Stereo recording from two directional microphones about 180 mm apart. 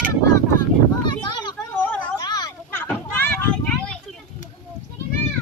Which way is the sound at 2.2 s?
20° left (ahead or behind).